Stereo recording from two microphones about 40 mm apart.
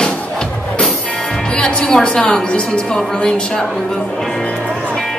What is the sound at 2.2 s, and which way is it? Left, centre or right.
A woman's voice, left.